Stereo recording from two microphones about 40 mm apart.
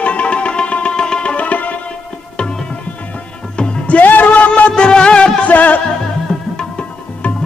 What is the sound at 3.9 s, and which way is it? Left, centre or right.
Music, left.